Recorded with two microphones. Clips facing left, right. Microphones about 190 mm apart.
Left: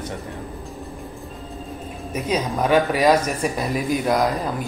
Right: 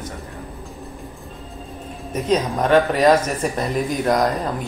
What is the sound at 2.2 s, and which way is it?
Speech, 5° left (ahead or behind).